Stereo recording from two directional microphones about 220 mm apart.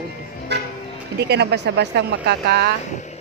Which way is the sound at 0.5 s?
50° right (ahead or behind).